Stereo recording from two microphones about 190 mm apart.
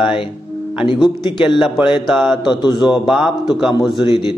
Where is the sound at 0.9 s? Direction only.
25° left (ahead or behind).